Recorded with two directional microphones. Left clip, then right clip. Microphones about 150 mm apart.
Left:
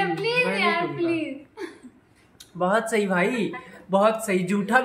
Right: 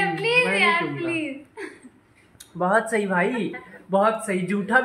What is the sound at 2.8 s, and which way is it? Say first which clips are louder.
Speech: even; 10° left (ahead or behind).